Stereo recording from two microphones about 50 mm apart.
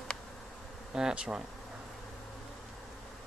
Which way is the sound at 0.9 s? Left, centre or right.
Centre.